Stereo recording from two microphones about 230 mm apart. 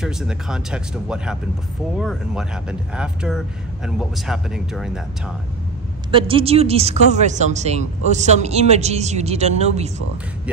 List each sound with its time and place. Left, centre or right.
0.0 s speech: centre
6.1 s speech: right